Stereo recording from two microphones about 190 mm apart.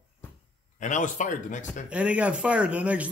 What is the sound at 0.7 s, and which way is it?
A man's voice, 40° left (ahead or behind).